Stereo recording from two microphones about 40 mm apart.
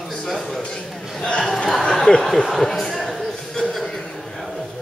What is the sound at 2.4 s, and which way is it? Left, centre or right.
Speech, centre.